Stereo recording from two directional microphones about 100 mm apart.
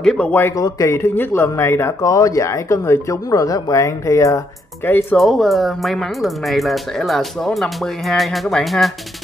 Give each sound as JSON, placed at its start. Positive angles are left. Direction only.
{"t": 0.0, "sound": "speech", "side_deg": 10}
{"t": 0.3, "sound": "speech", "side_deg": 20}
{"t": 0.6, "sound": "speech", "side_deg": 35}
{"t": 5.1, "sound": "speech", "side_deg": 0}